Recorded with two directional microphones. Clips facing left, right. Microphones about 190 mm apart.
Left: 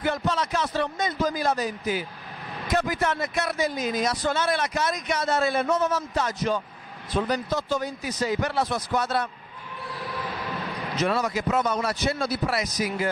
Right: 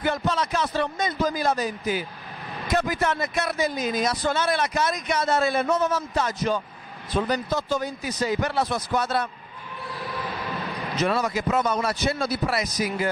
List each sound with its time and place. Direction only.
0.3 s speech: 15° right (ahead or behind)
9.9 s basketball bounce: 20° right (ahead or behind)
11.4 s a man's voice: 25° right (ahead or behind)
11.8 s speech: 15° right (ahead or behind)